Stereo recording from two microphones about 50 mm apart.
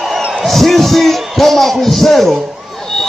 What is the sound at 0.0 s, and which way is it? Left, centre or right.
A man's voice, centre.